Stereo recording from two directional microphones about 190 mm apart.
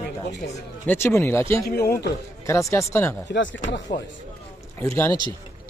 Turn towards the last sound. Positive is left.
turn(degrees=15)  # may be behind; listen again after turning